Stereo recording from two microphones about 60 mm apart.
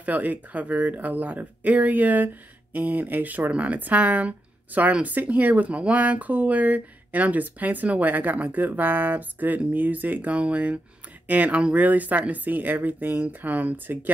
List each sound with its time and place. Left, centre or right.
0.0 s speech: right